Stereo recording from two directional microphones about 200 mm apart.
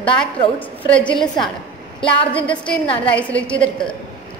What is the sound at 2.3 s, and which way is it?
A woman's voice, 5° left (ahead or behind).